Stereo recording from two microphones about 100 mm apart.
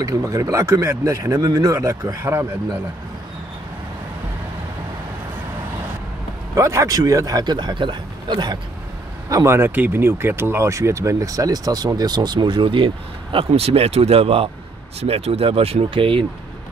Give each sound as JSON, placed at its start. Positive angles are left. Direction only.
{"t": 0.0, "sound": "speech", "side_deg": -35}
{"t": 6.5, "sound": "speech", "side_deg": -30}
{"t": 9.3, "sound": "speech", "side_deg": -30}